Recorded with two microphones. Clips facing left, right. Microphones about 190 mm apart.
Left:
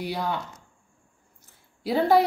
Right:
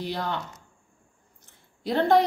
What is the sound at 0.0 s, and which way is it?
Speech, 10° left (ahead or behind).